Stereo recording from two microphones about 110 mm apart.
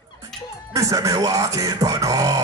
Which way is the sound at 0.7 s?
30° right (ahead or behind).